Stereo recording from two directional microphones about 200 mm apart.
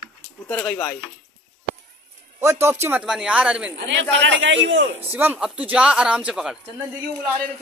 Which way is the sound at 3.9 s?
65° right (ahead or behind).